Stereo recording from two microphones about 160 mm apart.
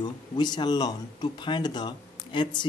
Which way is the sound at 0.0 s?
25° left (ahead or behind).